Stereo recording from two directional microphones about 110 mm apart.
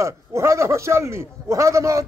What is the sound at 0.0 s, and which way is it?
A man's voice, 25° right (ahead or behind).